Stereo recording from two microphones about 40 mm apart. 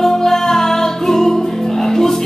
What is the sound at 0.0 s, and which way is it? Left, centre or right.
Music, centre.